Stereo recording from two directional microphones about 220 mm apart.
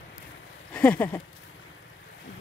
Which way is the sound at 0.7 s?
5° left (ahead or behind).